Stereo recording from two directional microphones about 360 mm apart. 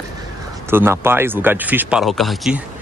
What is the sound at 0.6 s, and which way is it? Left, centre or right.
Speech, centre.